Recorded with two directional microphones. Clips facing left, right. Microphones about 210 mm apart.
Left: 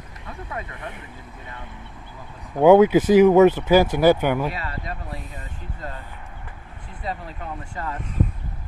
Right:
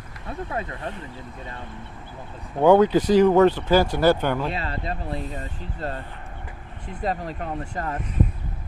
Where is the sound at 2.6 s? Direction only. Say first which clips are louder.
Left 3 dB; 10° left (ahead or behind).